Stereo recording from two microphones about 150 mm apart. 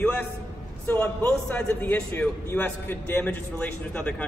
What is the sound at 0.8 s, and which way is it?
A man's voice, 15° left (ahead or behind).